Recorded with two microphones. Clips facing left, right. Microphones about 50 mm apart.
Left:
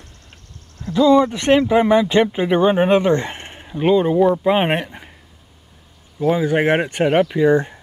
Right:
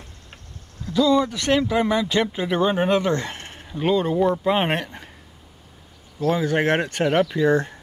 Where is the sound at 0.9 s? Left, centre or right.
Left.